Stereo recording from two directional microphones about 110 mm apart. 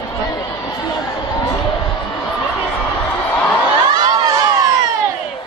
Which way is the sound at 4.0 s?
35° right (ahead or behind).